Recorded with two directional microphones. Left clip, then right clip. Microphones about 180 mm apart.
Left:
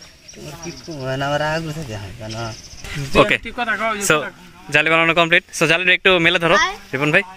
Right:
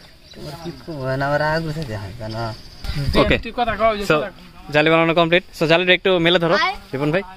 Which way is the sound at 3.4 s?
55° right (ahead or behind).